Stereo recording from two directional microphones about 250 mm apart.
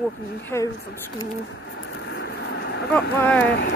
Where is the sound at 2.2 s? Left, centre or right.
Left.